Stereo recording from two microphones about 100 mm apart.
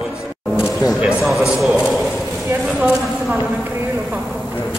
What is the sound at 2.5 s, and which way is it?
Speech, 10° right (ahead or behind).